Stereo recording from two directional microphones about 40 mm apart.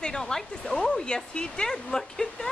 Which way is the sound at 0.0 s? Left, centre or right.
Centre.